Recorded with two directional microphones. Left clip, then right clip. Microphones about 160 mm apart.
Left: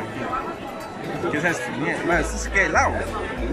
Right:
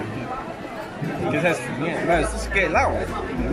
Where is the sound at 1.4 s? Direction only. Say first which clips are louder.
Right 3 dB; centre (ahead or behind).